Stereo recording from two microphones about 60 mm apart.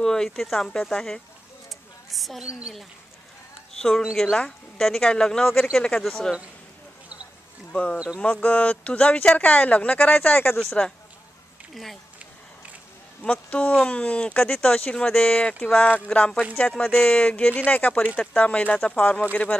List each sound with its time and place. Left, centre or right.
0.0 s speech: centre
1.7 s a sound: centre
4.0 s speech: centre
7.7 s speech: left
11.7 s speech: centre
13.2 s speech: centre
16.8 s speech: centre
17.2 s speech: left